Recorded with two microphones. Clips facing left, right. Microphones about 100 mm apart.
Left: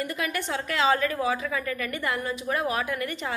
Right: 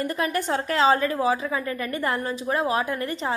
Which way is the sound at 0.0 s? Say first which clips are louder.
Right 4 dB; 35° right (ahead or behind).